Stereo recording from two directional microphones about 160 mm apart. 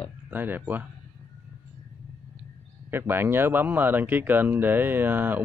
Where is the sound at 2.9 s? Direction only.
15° right (ahead or behind).